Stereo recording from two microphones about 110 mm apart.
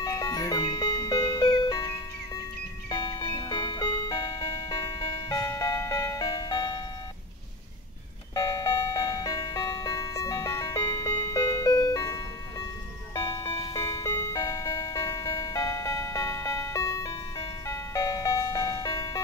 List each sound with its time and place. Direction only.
0.0 s music: 35° left (ahead or behind)
8.4 s music: 30° left (ahead or behind)
10.8 s music: 45° left (ahead or behind)